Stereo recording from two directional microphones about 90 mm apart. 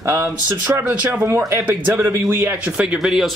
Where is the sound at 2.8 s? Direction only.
10° right (ahead or behind).